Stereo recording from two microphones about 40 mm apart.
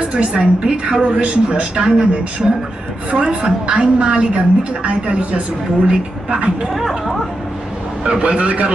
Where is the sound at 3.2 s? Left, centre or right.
Right.